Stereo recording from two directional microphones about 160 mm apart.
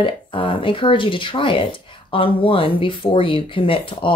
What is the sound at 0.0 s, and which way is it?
Speech, 35° left (ahead or behind).